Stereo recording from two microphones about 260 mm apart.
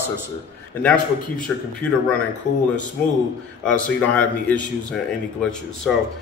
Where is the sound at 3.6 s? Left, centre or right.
Centre.